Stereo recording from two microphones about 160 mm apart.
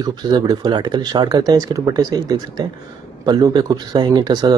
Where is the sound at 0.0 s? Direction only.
25° right (ahead or behind).